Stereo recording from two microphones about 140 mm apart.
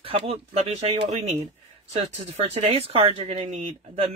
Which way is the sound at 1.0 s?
55° right (ahead or behind).